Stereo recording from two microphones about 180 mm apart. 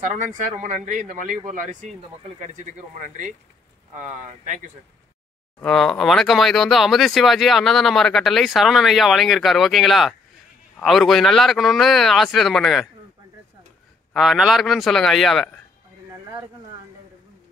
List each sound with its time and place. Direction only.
0.4 s speech: 40° right (ahead or behind)
5.6 s speech: 5° left (ahead or behind)
14.1 s speech: centre (ahead or behind)